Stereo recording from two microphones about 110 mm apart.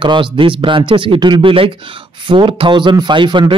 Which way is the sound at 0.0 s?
45° right (ahead or behind).